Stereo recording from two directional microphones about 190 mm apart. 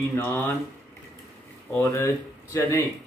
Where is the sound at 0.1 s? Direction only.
10° left (ahead or behind).